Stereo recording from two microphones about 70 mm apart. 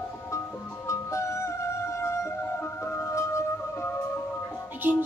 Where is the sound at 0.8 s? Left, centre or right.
Left.